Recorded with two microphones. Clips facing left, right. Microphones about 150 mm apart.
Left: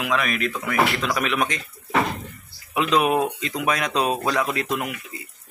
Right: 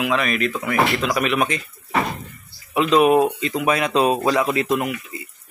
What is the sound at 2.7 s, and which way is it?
Speech, centre (ahead or behind).